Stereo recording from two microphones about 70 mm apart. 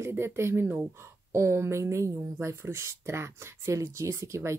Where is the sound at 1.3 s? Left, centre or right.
Right.